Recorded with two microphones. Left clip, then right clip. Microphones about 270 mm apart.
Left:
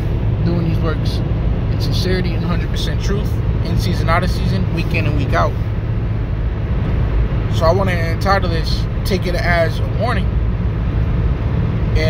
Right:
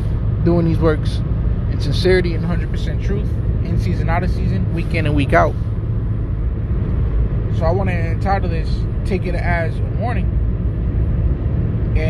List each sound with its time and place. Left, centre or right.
0.5 s speech: centre
3.8 s speech: centre
4.9 s speech: centre
7.6 s speech: centre